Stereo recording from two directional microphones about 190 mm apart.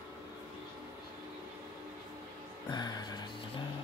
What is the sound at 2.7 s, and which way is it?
Music, 20° left (ahead or behind).